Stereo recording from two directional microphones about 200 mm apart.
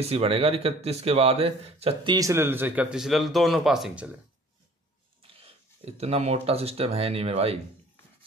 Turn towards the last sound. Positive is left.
turn(degrees=-30)  # may be behind; listen again after turning